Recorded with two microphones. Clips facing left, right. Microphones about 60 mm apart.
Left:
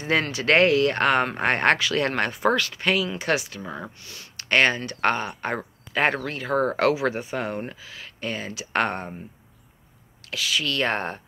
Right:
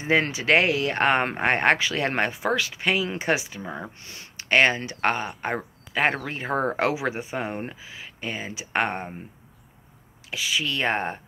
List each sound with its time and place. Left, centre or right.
0.0 s speech: right
4.0 s a sound: right
4.5 s speech: centre
6.3 s speech: right
10.3 s speech: centre